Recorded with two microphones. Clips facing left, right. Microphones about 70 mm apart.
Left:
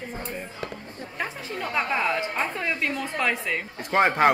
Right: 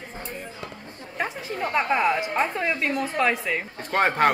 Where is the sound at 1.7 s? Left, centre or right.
Centre.